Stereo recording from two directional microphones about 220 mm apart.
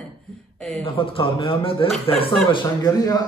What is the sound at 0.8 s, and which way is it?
A man's voice, 25° left (ahead or behind).